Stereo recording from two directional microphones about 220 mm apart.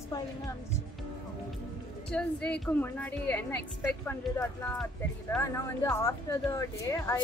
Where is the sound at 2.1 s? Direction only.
5° left (ahead or behind).